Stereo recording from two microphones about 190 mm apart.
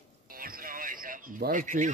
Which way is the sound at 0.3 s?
50° right (ahead or behind).